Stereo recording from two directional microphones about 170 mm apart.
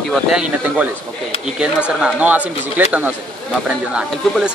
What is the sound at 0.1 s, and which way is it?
Speech, 5° right (ahead or behind).